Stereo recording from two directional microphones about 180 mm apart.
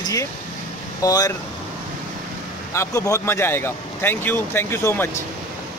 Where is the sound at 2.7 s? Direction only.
15° left (ahead or behind).